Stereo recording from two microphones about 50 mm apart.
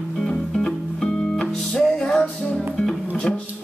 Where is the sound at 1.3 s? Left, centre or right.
Centre.